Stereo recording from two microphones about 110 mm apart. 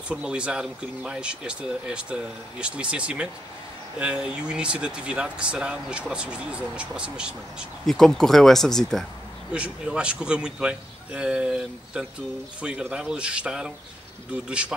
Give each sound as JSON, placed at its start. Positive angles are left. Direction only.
{"t": 0.1, "sound": "speech", "side_deg": -10}
{"t": 7.8, "sound": "speech", "side_deg": 5}
{"t": 9.5, "sound": "speech", "side_deg": -10}